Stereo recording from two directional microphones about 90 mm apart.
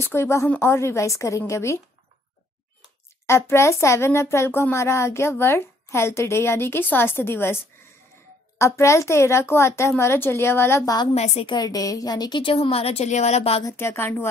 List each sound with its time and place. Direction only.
0.0 s a woman's voice: 30° left (ahead or behind)
3.3 s speech: 30° left (ahead or behind)
11.4 s a woman's voice: 50° left (ahead or behind); by 13.7 s 90° left
13.7 s speech: 30° left (ahead or behind)